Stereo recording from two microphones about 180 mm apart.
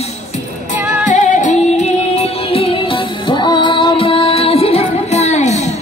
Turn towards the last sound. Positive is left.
turn(degrees=40)  # may be behind; listen again after turning